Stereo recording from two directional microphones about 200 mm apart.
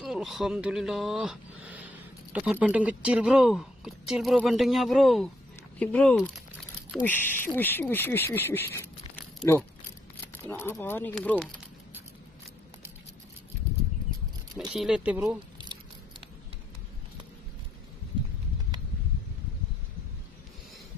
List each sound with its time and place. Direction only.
0.0 s speech: centre (ahead or behind)
14.7 s speech: 5° right (ahead or behind)
15.5 s a sound: 20° right (ahead or behind)